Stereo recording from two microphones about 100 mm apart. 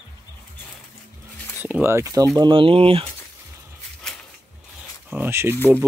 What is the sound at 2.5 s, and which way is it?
Speech, 60° right (ahead or behind).